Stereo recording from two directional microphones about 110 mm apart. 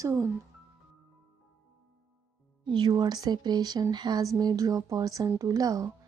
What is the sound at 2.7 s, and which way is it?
Speech, 40° right (ahead or behind).